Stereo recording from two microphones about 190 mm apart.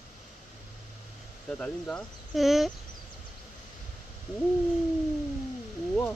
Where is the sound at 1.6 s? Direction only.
5° left (ahead or behind).